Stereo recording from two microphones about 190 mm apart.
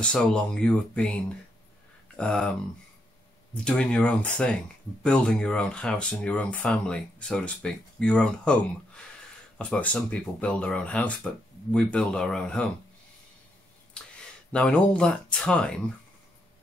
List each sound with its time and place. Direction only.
0.0 s speech: 5° left (ahead or behind)
3.5 s speech: 5° left (ahead or behind)
14.0 s a sound: 5° left (ahead or behind)
14.5 s speech: 5° left (ahead or behind)